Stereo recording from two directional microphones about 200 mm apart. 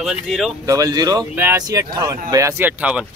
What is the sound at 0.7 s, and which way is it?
Speech, 15° right (ahead or behind).